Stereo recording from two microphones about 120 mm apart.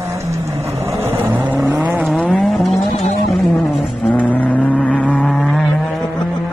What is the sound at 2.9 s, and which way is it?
Vehicle, 65° left (ahead or behind).